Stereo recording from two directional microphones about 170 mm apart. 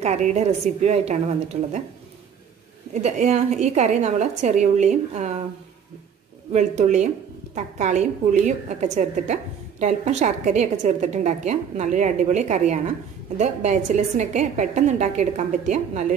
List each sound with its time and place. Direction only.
0.0 s a woman's voice: 40° right (ahead or behind)
2.9 s a woman's voice: 40° right (ahead or behind)
6.5 s a woman's voice: 45° right (ahead or behind)